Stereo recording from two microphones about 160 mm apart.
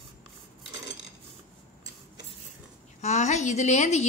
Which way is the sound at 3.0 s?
45° left (ahead or behind).